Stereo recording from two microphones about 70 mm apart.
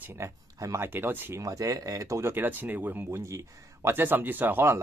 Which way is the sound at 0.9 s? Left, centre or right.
Right.